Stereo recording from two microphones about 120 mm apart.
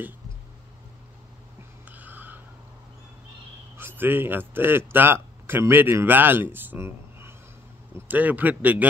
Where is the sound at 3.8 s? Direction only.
15° right (ahead or behind).